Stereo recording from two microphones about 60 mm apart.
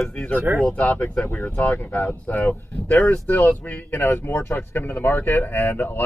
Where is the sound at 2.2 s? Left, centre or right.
Left.